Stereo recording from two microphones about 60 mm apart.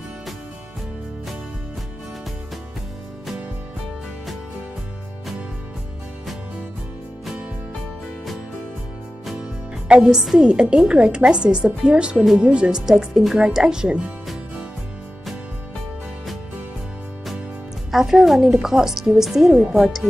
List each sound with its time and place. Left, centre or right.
9.8 s a woman's voice: centre
17.9 s a woman's voice: centre